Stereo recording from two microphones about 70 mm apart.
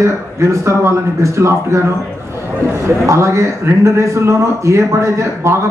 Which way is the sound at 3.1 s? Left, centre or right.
Right.